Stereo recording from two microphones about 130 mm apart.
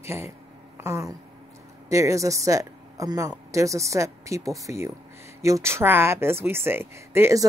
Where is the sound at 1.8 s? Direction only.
25° right (ahead or behind).